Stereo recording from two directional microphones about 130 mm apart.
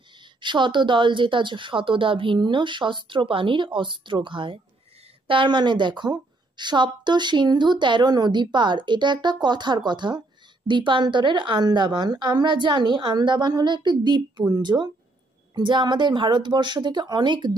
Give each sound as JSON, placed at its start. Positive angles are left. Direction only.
{"t": 0.4, "sound": "a woman's voice", "side_deg": -35}